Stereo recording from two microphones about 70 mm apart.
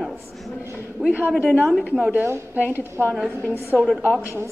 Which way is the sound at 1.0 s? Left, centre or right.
Centre.